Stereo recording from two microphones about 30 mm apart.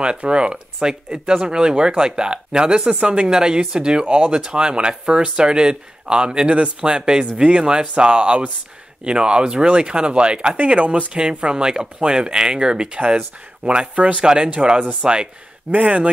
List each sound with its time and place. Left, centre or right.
0.0 s speech: right
3.3 s speech: right
11.1 s speech: right
13.7 s speech: right
15.7 s speech: right